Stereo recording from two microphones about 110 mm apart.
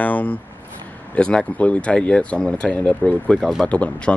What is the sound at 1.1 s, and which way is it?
Speech, 10° left (ahead or behind).